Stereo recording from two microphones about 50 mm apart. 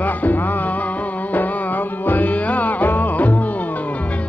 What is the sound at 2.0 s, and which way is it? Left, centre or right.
Music, left.